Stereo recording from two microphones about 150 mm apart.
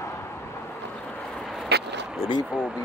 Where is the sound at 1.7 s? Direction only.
90° right.